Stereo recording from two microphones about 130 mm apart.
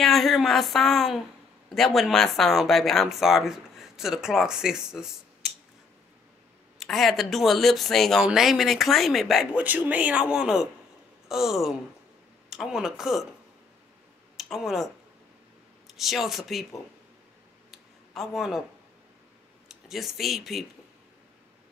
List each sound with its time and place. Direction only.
0.0 s speech: centre (ahead or behind)
6.8 s speech: centre (ahead or behind)
9.6 s a man's voice: 10° right (ahead or behind)
14.3 s speech: centre (ahead or behind)
15.9 s speech: centre (ahead or behind)
17.6 s a sound: centre (ahead or behind)
19.7 s speech: centre (ahead or behind)